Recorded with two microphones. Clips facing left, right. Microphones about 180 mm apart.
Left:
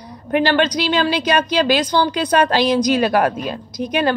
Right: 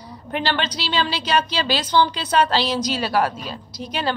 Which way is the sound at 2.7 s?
15° left (ahead or behind).